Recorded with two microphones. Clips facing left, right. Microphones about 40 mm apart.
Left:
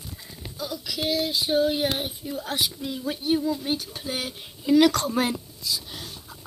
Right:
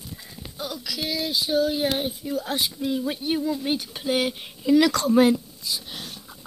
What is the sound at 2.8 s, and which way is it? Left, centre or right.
A woman's voice, right.